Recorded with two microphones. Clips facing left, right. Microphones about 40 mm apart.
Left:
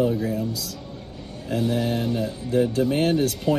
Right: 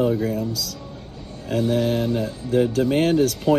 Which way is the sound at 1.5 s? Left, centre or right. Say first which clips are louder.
Right 3 dB; right.